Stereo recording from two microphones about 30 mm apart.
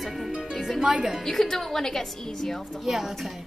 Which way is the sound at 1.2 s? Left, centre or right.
Centre.